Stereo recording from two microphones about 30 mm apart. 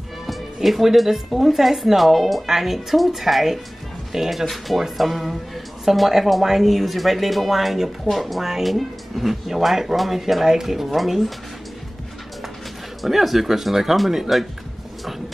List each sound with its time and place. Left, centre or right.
0.3 s speech: centre
13.0 s speech: centre